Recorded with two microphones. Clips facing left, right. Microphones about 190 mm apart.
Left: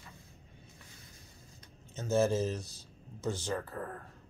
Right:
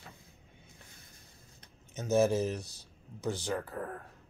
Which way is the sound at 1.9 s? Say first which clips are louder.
Right 2 dB; 15° right (ahead or behind).